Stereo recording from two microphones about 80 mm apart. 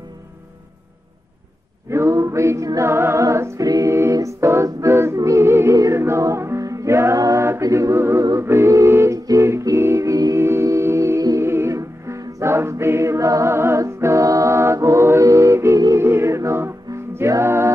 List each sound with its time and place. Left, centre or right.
1.9 s music: right
7.6 s a capella: right
8.4 s music: right